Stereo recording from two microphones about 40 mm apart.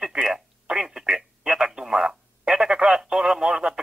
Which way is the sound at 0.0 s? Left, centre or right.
Centre.